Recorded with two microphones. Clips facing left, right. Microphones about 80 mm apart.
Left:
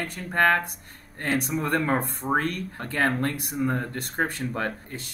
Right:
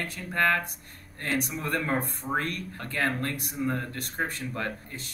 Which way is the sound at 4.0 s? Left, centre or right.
Left.